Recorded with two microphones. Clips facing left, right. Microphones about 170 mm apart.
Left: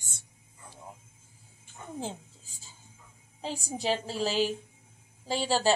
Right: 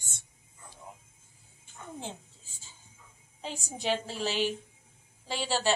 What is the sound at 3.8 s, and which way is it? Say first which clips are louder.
Speech: left 1 dB; 35° left (ahead or behind).